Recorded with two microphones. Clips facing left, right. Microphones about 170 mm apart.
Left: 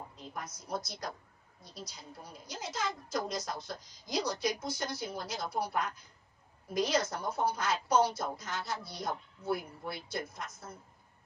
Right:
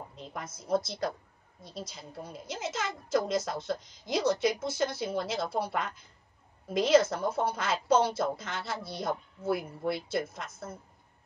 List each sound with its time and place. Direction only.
0.4 s a woman's voice: 25° right (ahead or behind)
6.7 s a woman's voice: 25° right (ahead or behind)